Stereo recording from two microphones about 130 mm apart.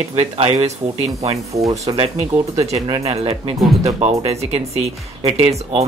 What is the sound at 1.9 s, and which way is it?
Speech, 50° right (ahead or behind).